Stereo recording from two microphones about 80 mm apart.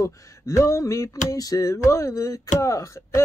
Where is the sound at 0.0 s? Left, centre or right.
Left.